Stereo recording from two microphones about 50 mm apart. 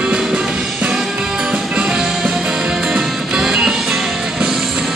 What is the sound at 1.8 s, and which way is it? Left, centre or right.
Music, centre.